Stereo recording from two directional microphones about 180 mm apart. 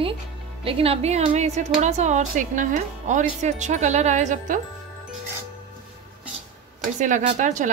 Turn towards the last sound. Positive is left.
turn(degrees=-45)  # may be behind; listen again after turning